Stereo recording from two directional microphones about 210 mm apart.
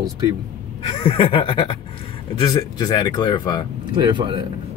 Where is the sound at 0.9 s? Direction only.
25° left (ahead or behind).